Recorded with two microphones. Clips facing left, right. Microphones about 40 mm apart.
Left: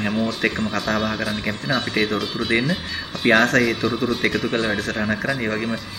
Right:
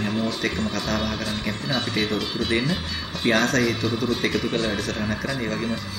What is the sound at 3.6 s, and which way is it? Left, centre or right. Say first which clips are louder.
A man's voice: left 2 dB; centre.